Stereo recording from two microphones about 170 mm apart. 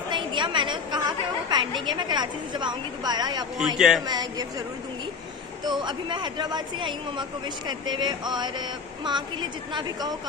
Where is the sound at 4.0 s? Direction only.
25° right (ahead or behind).